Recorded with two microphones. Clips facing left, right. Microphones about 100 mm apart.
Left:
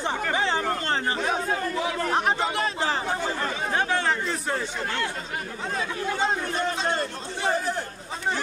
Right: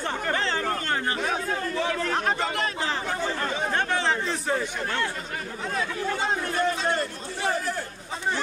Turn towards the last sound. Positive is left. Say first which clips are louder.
# left 1 dB
turn(degrees=20)  # may be behind; listen again after turning